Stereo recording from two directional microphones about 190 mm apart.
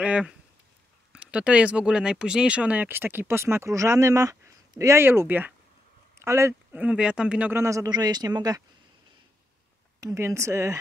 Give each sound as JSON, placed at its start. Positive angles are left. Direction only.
{"t": 0.0, "sound": "speech", "side_deg": -5}
{"t": 9.9, "sound": "speech", "side_deg": -15}